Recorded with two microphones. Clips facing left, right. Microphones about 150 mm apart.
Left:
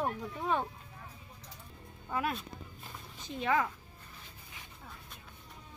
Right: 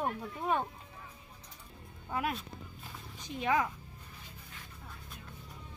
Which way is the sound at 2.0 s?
10° right (ahead or behind).